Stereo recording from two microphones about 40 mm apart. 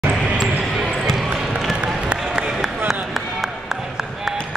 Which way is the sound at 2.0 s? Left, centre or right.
Right.